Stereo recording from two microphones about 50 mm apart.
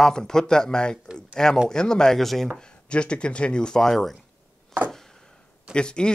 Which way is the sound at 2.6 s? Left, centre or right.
Left.